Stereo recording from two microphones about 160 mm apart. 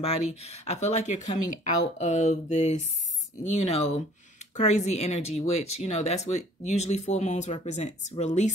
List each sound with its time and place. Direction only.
0.0 s speech: 40° left (ahead or behind)